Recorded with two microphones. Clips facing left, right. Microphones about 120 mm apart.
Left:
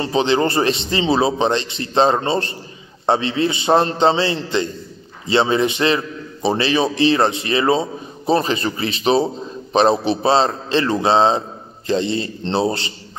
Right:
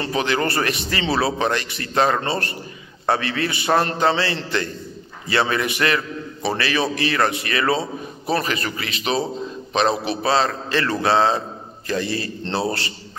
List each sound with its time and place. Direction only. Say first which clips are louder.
0.0 s a man's voice: left 5 dB; 25° left (ahead or behind)